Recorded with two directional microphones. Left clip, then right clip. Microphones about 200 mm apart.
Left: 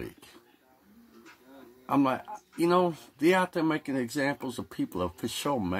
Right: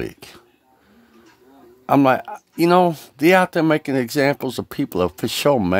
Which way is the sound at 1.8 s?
50° right (ahead or behind).